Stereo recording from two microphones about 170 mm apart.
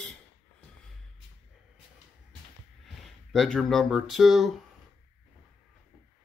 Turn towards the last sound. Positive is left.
turn(degrees=0)  # may be behind; listen again after turning